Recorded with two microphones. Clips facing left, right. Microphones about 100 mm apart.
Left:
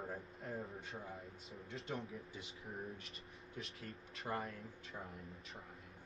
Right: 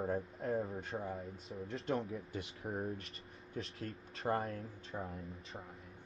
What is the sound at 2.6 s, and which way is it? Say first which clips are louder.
Speech: right 8 dB; 60° right (ahead or behind).